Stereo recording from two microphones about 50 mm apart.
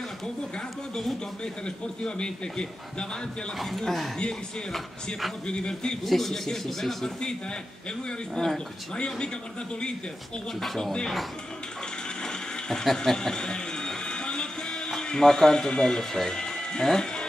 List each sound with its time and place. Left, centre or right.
2.0 s a man's voice: centre
3.5 s speech: centre
5.5 s a man's voice: centre
6.0 s speech: centre
8.4 s a man's voice: centre
10.6 s a man's voice: centre
12.2 s a sound: centre
15.0 s speech: centre